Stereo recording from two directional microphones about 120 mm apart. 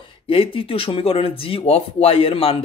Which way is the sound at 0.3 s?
50° left (ahead or behind).